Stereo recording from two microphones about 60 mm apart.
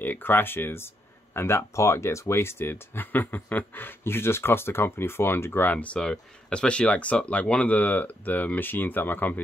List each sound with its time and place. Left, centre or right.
0.0 s speech: left